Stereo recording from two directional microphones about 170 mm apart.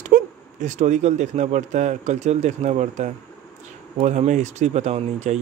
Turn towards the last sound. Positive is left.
turn(degrees=-40)  # may be behind; listen again after turning